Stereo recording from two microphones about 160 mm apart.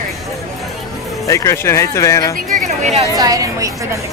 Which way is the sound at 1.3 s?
20° left (ahead or behind).